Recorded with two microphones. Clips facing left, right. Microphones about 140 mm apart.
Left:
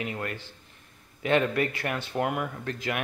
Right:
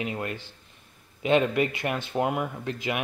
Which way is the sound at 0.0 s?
20° right (ahead or behind).